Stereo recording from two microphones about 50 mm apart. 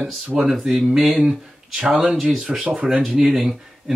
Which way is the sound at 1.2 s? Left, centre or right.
Right.